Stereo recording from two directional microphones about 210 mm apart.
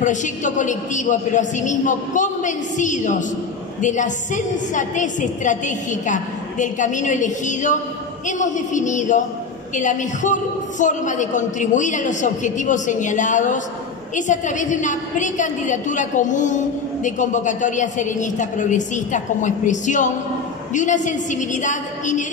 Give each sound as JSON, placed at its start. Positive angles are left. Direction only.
{"t": 0.0, "sound": "a woman's voice", "side_deg": 35}